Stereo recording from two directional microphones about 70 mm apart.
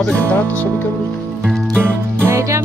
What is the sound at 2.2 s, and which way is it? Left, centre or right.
Music, right.